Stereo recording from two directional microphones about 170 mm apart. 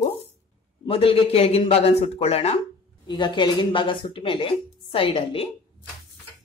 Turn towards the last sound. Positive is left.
turn(degrees=35)  # may be behind; listen again after turning